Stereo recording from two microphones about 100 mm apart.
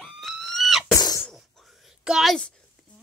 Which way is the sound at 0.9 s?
35° left (ahead or behind).